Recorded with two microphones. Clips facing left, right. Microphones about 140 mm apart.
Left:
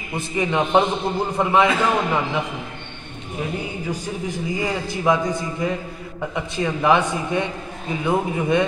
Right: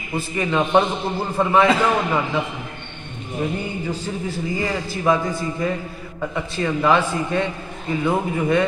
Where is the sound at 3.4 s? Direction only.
5° left (ahead or behind).